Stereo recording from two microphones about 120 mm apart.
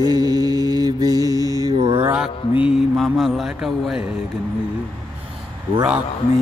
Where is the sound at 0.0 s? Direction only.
35° right (ahead or behind).